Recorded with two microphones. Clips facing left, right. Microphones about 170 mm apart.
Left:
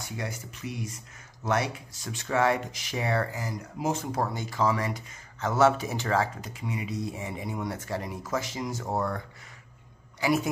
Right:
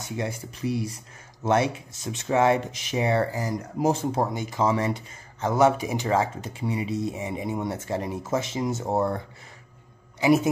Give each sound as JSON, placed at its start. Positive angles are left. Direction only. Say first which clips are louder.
{"t": 0.1, "sound": "speech", "louder": "right 7 dB", "side_deg": -25}
{"t": 3.3, "sound": "speech", "louder": "right 7 dB", "side_deg": -40}
{"t": 5.5, "sound": "speech", "louder": "right 2 dB", "side_deg": -15}
{"t": 10.2, "sound": "speech", "louder": "right 6 dB", "side_deg": -20}